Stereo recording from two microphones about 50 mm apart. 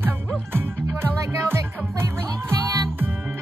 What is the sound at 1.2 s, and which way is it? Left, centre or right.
Music, right.